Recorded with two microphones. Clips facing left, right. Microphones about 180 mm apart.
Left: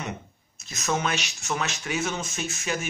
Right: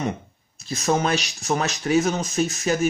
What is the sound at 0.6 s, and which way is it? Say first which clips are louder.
Speech: right 6 dB; 35° right (ahead or behind).